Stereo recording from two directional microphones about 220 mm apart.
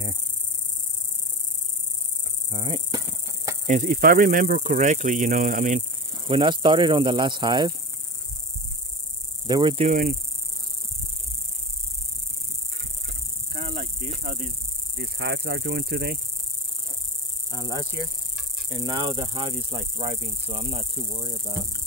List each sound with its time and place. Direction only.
2.5 s a sound: 20° right (ahead or behind)
3.6 s speech: 35° right (ahead or behind)
6.2 s speech: 20° right (ahead or behind)
9.5 s speech: 20° right (ahead or behind)
9.8 s speech: 40° right (ahead or behind)
13.5 s snake: 25° right (ahead or behind)
15.0 s speech: 50° right (ahead or behind)
17.5 s speech: 20° right (ahead or behind)